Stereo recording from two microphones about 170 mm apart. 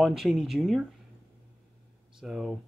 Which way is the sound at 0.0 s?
Centre (ahead or behind).